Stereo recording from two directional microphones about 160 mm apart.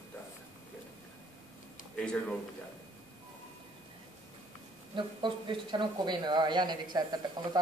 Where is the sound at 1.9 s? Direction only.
5° left (ahead or behind).